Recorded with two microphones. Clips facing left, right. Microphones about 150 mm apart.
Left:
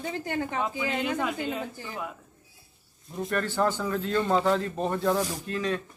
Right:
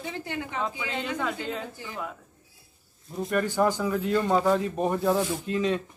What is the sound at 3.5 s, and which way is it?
Speech, 10° right (ahead or behind).